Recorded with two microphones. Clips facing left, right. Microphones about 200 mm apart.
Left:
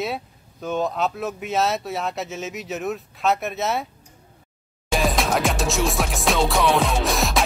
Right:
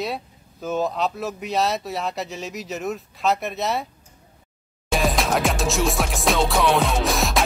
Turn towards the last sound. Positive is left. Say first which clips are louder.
# even
turn(degrees=0)  # may be behind; listen again after turning